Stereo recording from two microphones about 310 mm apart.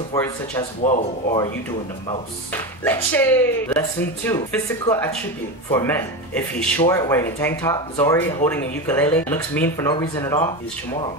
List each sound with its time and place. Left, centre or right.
0.1 s speech: centre
2.0 s speech: centre
4.8 s speech: centre